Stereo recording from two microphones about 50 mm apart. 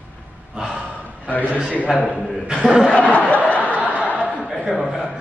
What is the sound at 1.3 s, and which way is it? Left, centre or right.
Speech, left.